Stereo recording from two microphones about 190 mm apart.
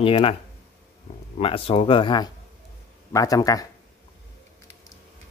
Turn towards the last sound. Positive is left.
turn(degrees=20)  # may be behind; listen again after turning